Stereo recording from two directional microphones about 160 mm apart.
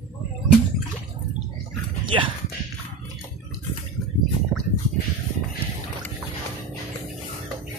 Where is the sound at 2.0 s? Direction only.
30° right (ahead or behind).